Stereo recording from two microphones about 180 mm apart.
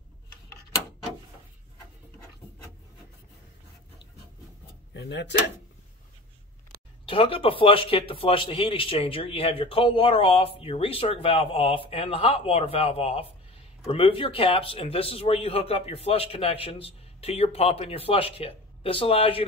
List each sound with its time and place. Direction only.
4.9 s speech: 75° left (ahead or behind)
7.1 s a man's voice: 30° left (ahead or behind)